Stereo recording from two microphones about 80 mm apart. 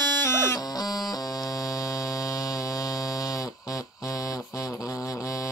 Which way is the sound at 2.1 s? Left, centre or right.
Left.